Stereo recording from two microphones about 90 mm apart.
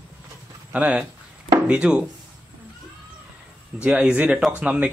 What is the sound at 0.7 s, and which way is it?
Speech, 15° right (ahead or behind).